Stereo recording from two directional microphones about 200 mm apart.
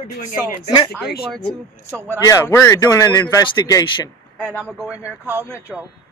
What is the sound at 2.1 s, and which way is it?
A man's voice, 10° left (ahead or behind).